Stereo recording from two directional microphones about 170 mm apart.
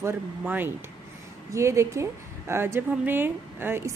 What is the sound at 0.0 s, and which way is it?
A woman's voice, 10° right (ahead or behind).